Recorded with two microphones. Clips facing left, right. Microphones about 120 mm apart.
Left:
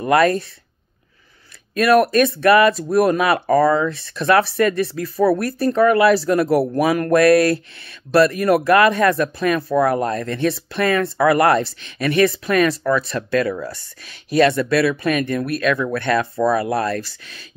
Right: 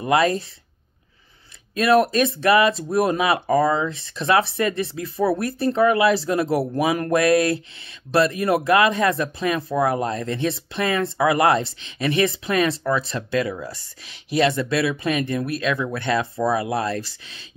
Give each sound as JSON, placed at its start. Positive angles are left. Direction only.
{"t": 0.1, "sound": "speech", "side_deg": -25}
{"t": 1.8, "sound": "speech", "side_deg": -25}